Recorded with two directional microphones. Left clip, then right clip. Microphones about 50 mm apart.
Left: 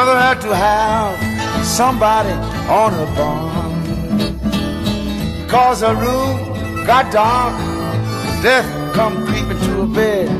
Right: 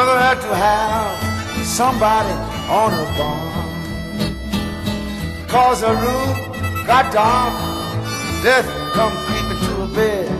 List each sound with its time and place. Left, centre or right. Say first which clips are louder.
0.0 s music: left 2 dB; left